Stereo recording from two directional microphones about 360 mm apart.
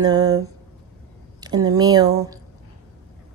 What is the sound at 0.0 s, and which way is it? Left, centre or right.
Speech, centre.